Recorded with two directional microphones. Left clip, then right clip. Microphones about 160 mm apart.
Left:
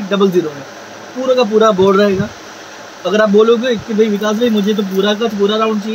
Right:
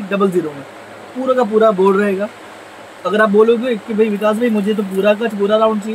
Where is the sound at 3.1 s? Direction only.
10° left (ahead or behind).